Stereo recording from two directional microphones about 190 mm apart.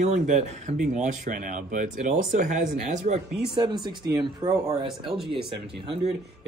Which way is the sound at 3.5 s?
25° right (ahead or behind).